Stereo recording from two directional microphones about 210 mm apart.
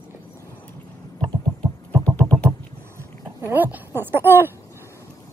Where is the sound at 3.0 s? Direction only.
10° right (ahead or behind).